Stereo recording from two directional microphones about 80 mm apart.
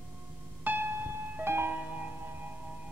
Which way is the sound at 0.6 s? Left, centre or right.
Right.